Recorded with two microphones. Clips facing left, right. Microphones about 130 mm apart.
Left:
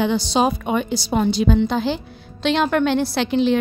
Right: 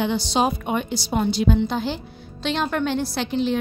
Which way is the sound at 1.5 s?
90° left.